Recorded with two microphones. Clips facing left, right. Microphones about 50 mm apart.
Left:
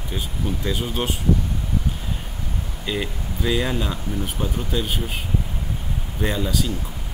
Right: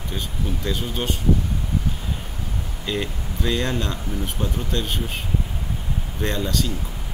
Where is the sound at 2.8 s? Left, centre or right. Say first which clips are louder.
Even; centre.